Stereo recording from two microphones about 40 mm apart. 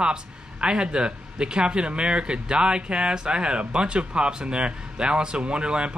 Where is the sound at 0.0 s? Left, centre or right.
Right.